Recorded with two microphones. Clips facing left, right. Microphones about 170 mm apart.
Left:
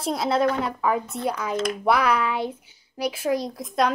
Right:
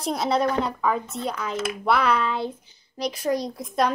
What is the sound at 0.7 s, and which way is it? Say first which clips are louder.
Speech: left 1 dB; 10° left (ahead or behind).